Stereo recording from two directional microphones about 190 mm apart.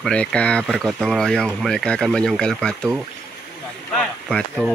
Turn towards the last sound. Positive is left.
turn(degrees=0)  # may be behind; listen again after turning